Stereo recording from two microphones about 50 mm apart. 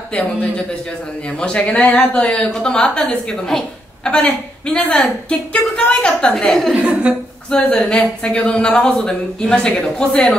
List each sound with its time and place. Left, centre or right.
1.6 s speech: left
2.5 s a woman's voice: left
3.4 s speech: centre
4.1 s a woman's voice: left
6.3 s speech: centre
6.7 s a woman's voice: right
7.8 s a woman's voice: left